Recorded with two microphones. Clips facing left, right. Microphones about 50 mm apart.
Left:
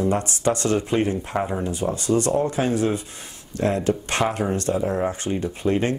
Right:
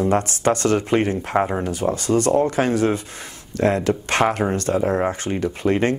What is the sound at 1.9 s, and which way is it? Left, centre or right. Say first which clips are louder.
Speech: right 3 dB; right.